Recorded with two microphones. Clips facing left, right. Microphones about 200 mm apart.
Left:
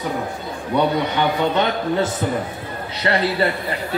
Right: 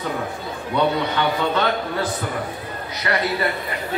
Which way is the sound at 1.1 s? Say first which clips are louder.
Left 2 dB; 20° left (ahead or behind).